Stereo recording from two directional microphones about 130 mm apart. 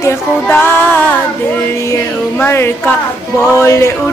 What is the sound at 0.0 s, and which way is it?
Music, 20° left (ahead or behind).